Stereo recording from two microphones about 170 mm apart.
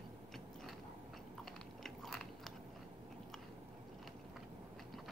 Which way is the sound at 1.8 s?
Centre (ahead or behind).